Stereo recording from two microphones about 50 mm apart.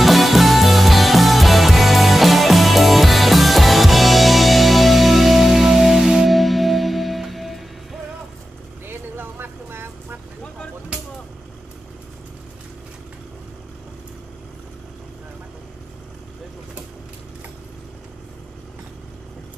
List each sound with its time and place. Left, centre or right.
0.0 s music: centre
8.8 s vehicle: right
10.9 s vehicle: right